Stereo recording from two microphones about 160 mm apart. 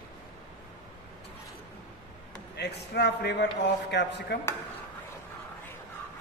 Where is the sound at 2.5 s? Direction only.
90° left.